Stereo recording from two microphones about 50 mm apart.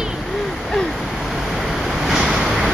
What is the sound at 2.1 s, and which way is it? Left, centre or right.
Waves, centre.